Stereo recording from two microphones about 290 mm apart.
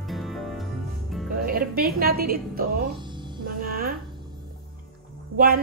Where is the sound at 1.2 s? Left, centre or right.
Right.